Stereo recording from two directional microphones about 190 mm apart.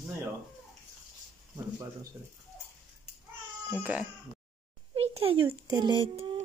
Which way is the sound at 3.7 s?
5° right (ahead or behind).